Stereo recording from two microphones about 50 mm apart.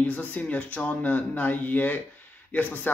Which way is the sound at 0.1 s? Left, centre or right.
Left.